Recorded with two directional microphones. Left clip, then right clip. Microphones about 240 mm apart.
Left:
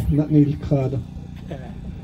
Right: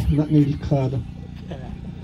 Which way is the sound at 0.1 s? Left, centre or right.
Centre.